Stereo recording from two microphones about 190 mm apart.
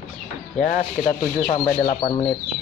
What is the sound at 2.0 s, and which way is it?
Speech, 25° left (ahead or behind).